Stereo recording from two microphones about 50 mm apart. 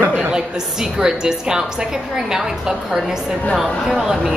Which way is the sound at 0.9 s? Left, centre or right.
Centre.